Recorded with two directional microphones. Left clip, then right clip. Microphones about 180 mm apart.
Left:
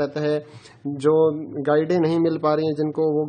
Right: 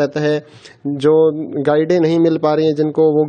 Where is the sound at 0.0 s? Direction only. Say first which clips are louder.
Right 6 dB; 35° right (ahead or behind).